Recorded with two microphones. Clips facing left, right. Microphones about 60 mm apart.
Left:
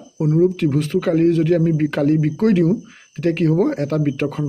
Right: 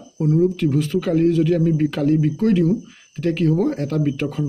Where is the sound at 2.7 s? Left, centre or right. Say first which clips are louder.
Left 1 dB; left.